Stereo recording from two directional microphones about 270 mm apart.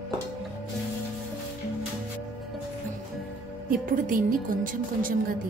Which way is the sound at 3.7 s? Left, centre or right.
Right.